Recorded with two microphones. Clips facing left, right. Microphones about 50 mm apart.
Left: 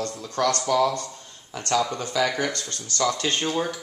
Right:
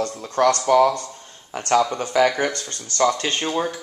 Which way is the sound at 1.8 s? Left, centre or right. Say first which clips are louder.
Right 6 dB; right.